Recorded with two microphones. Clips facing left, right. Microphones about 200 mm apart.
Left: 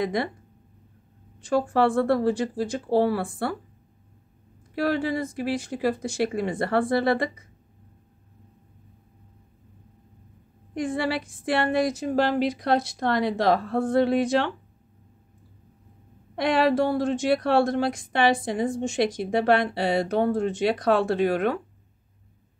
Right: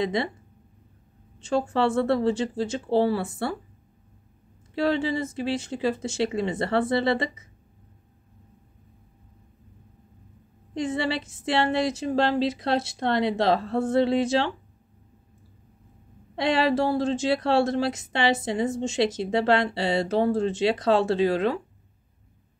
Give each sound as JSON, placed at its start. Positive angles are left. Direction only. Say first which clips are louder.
{"t": 0.0, "sound": "a woman's voice", "louder": "even", "side_deg": -25}
{"t": 1.4, "sound": "a woman's voice", "louder": "left 2 dB", "side_deg": -25}
{"t": 4.7, "sound": "a woman's voice", "louder": "even", "side_deg": -25}
{"t": 10.7, "sound": "a woman's voice", "louder": "even", "side_deg": -25}
{"t": 16.3, "sound": "a woman's voice", "louder": "left 1 dB", "side_deg": -25}